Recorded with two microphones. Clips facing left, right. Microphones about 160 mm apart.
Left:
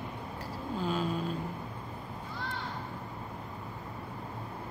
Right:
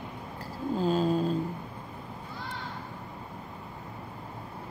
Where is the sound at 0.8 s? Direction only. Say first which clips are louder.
Right 7 dB; 35° right (ahead or behind).